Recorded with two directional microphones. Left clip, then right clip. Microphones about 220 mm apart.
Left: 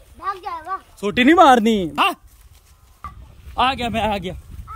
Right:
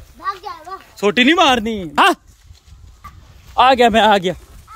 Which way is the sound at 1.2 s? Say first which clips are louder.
Left 2 dB; 30° left (ahead or behind).